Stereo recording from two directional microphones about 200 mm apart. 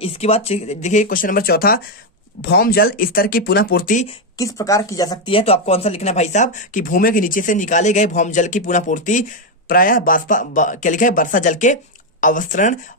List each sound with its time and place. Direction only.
0.0 s speech: 30° left (ahead or behind)
4.4 s speech: 15° left (ahead or behind); by 12.7 s 40° left (ahead or behind)